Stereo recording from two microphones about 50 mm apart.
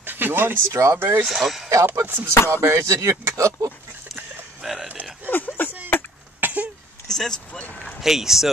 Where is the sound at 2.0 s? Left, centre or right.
Right.